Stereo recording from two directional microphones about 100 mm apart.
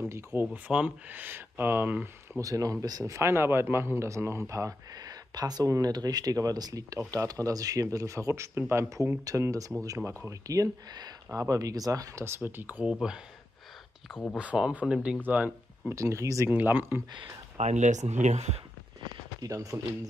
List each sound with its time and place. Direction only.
0.1 s speech: 25° right (ahead or behind)
0.5 s speech: 10° right (ahead or behind)
2.4 s a man's voice: 35° right (ahead or behind)
3.2 s a man's voice: 25° right (ahead or behind)
8.8 s a man's voice: 35° right (ahead or behind)
12.3 s speech: 20° right (ahead or behind)
14.3 s speech: 10° right (ahead or behind)
15.9 s a man's voice: 30° right (ahead or behind)
16.5 s speech: 20° right (ahead or behind)
17.6 s speech: 90° right
19.4 s a man's voice: 35° right (ahead or behind)